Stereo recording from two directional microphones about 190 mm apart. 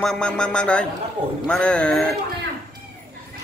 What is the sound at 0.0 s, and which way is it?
A man's voice, 5° left (ahead or behind).